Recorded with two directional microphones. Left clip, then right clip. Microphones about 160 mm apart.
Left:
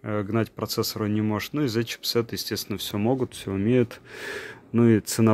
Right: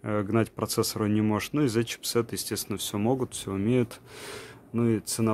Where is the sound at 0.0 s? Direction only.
5° right (ahead or behind); by 4.3 s 15° left (ahead or behind).